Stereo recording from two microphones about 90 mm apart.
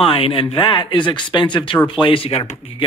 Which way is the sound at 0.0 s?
85° left.